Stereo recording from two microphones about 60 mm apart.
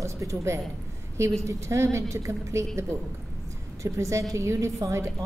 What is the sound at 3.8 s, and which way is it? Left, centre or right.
Speech, right.